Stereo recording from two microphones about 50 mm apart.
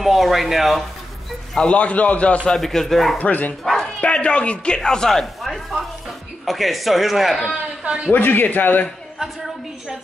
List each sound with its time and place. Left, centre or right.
0.0 s speech: centre
1.5 s a man's voice: centre
2.5 s speech: centre
3.2 s speech: left
3.6 s bow-wow: centre
4.0 s speech: left; by 7.5 s centre
8.1 s speech: left
9.2 s a woman's voice: centre